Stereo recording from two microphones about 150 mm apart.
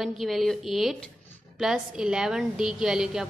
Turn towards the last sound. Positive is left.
turn(degrees=-5)  # may be behind; listen again after turning